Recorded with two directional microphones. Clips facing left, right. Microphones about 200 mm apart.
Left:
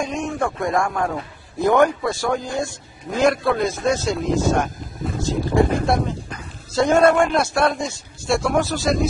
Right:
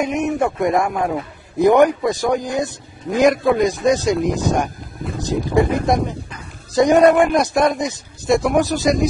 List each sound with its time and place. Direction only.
0.0 s a man's voice: 20° right (ahead or behind)